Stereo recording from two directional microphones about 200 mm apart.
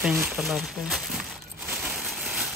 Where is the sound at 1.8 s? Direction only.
Centre (ahead or behind).